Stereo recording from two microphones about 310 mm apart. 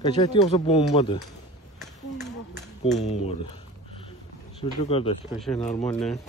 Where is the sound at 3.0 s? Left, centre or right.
Left.